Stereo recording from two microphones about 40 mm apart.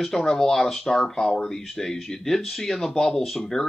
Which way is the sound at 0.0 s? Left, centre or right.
Centre.